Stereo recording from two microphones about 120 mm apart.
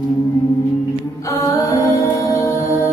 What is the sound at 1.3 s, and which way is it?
Music, 25° left (ahead or behind).